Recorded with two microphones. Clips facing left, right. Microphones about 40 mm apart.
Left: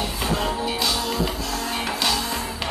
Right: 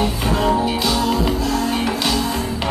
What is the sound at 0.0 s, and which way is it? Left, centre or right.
Music, centre.